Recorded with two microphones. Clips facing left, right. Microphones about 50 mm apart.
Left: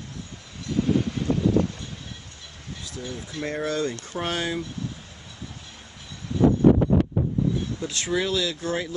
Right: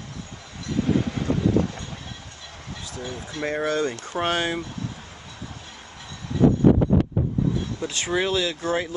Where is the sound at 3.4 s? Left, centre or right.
Right.